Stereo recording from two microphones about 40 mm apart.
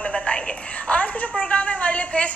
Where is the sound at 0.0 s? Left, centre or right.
Left.